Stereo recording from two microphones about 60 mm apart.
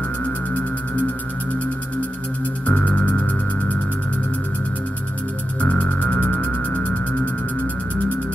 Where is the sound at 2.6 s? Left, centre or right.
Left.